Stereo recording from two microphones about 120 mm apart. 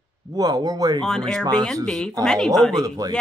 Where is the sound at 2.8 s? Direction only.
30° right (ahead or behind).